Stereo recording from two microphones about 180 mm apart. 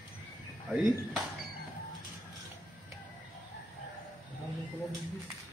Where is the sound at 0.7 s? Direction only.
Centre (ahead or behind).